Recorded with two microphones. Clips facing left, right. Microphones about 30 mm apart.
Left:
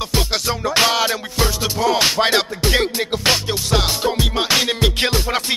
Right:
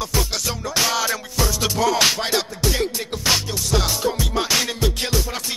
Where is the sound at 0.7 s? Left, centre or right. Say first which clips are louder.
Left 4 dB; left.